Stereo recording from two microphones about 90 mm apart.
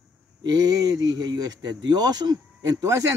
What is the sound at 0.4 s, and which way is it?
Speech, 45° right (ahead or behind).